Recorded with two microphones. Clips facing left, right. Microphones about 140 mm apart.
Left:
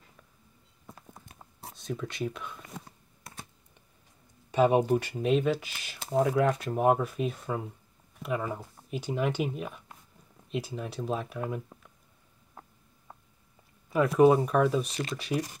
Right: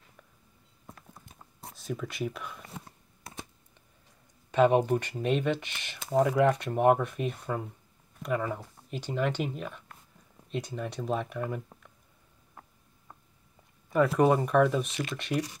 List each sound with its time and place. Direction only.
1.6 s a sound: centre (ahead or behind)
4.5 s speech: 10° left (ahead or behind)
13.9 s speech: 5° left (ahead or behind)
15.3 s speech: 35° left (ahead or behind)